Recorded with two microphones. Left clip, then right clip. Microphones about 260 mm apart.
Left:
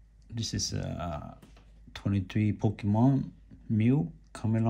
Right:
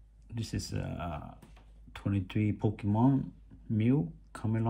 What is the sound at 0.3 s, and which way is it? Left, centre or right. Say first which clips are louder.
Speech: left 6 dB; centre.